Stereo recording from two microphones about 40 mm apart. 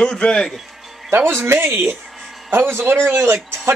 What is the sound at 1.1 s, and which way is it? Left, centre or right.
Speech, right.